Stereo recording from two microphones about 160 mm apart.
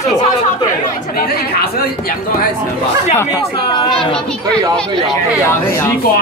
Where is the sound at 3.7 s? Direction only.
30° left (ahead or behind).